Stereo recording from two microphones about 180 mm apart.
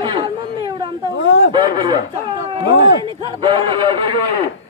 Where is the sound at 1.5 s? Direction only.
25° right (ahead or behind).